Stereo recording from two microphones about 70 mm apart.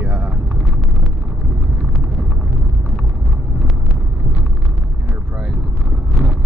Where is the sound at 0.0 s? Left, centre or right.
Right.